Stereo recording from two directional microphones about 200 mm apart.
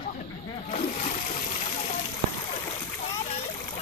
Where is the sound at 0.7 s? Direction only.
35° left (ahead or behind).